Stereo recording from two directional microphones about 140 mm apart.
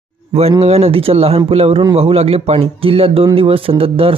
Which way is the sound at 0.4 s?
45° right (ahead or behind).